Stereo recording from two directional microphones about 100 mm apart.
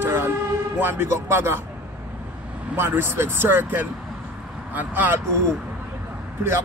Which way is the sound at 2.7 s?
25° right (ahead or behind).